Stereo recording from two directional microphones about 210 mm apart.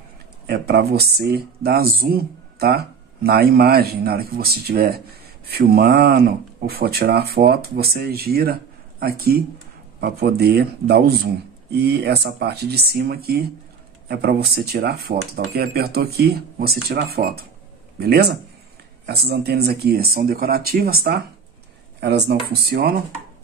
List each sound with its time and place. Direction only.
0.5 s speech: 50° right (ahead or behind)
9.9 s speech: 50° right (ahead or behind)